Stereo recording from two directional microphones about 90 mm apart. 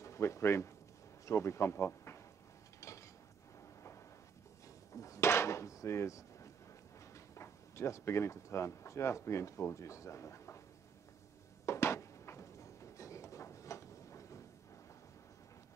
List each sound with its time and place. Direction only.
0.0 s speech: 35° left (ahead or behind)
4.9 s drawer open or close: 35° left (ahead or behind)
7.3 s speech: 30° left (ahead or behind)
11.6 s a sound: 30° left (ahead or behind)